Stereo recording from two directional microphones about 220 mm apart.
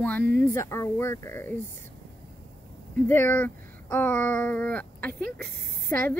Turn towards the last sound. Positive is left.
turn(degrees=10)  # may be behind; listen again after turning